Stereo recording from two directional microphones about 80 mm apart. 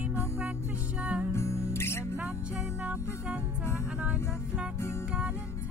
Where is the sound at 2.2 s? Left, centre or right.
Right.